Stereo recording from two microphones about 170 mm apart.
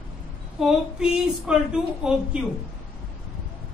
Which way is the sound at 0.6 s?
5° right (ahead or behind).